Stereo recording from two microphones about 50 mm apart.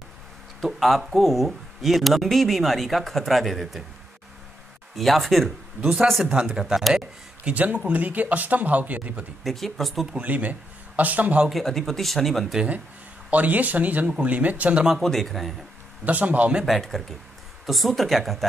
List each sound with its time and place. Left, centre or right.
0.6 s speech: centre
4.9 s speech: centre
6.2 s speech: centre
7.4 s speech: right
9.4 s speech: centre
10.1 s speech: right
11.6 s speech: centre
13.3 s speech: right
15.0 s speech: centre
16.1 s speech: right
16.6 s speech: centre